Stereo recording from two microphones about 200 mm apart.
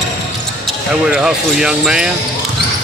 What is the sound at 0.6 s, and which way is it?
Speech, 5° right (ahead or behind).